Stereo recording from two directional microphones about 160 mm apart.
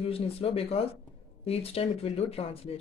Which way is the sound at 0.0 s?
35° left (ahead or behind).